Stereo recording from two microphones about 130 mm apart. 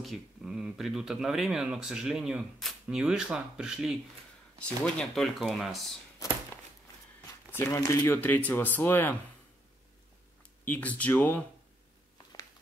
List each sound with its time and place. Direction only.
0.0 s speech: 5° right (ahead or behind)
4.6 s speech: 10° left (ahead or behind)
7.5 s speech: 20° left (ahead or behind)
10.6 s speech: 10° left (ahead or behind)